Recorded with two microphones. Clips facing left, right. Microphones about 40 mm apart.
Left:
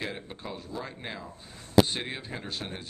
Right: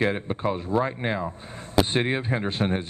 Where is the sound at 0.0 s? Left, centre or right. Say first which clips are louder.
Right 12 dB; right.